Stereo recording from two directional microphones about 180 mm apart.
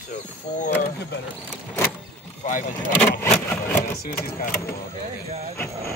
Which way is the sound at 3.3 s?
10° left (ahead or behind).